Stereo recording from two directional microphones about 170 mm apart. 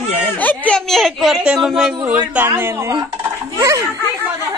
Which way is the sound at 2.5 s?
15° right (ahead or behind).